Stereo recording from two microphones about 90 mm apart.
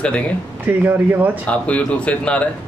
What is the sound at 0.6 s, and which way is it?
Speech, 20° right (ahead or behind).